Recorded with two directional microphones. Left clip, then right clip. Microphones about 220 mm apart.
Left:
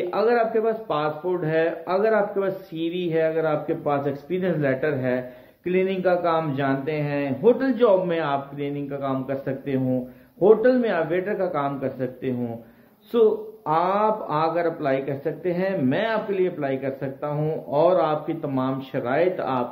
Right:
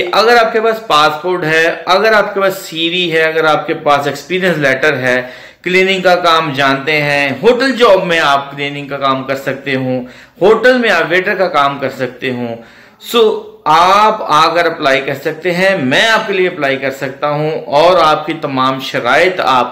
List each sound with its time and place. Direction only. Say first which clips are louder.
0.1 s a man's voice: right 12 dB; 5° right (ahead or behind)